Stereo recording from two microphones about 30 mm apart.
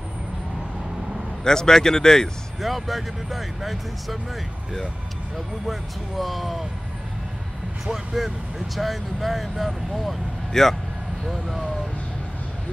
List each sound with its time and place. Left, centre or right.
1.4 s speech: centre
2.6 s speech: centre
5.7 s speech: centre
7.8 s speech: centre
10.5 s speech: centre
11.2 s speech: centre